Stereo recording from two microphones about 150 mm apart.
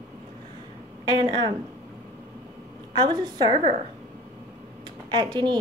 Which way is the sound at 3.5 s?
55° right (ahead or behind).